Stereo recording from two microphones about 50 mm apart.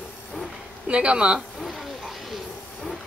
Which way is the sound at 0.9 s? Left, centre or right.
Right.